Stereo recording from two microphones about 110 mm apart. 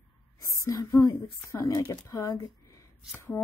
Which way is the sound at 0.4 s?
30° left (ahead or behind).